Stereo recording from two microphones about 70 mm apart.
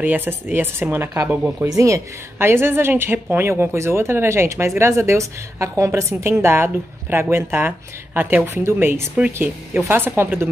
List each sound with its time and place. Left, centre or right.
0.0 s speech: right
1.6 s speech: right
2.3 s speech: right
8.6 s speech: right
9.1 s speech: centre
9.8 s speech: right